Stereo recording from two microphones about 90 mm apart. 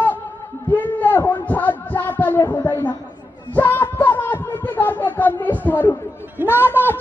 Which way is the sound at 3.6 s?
20° left (ahead or behind).